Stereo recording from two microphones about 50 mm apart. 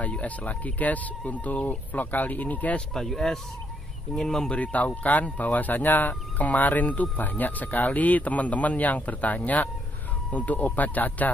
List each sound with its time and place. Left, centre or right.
0.0 s speech: left
2.9 s speech: centre
4.5 s speech: left